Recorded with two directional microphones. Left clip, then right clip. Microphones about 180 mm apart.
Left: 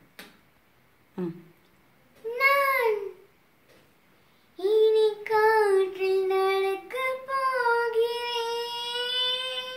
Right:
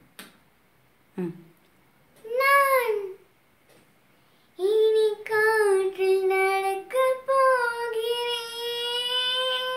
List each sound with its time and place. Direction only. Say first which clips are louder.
1.2 s speech: right 1 dB; 15° right (ahead or behind)
2.3 s a sound: right 3 dB; 15° right (ahead or behind)
4.6 s child singing: even; 15° right (ahead or behind)